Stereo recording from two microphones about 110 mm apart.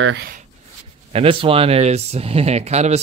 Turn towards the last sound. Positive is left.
turn(degrees=-85)